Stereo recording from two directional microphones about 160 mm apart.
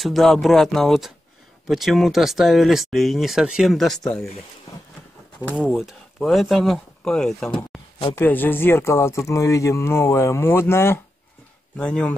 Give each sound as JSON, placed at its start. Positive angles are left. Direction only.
{"t": 0.0, "sound": "speech", "side_deg": 0}
{"t": 5.8, "sound": "speech", "side_deg": 0}
{"t": 7.5, "sound": "a sound", "side_deg": 30}
{"t": 8.2, "sound": "speech", "side_deg": 10}